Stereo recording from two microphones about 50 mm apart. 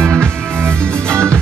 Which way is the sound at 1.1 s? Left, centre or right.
Right.